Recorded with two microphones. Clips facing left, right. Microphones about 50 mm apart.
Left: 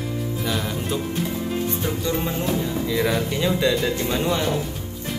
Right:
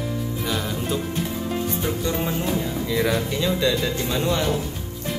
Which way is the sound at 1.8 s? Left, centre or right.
Centre.